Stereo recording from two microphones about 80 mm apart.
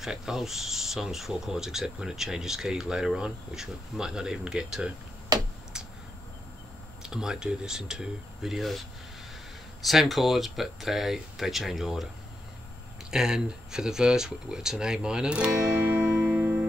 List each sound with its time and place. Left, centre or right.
0.0 s speech: centre
5.3 s tick-tock: right
7.0 s speech: centre
9.8 s speech: centre
13.1 s speech: centre
15.8 s music: right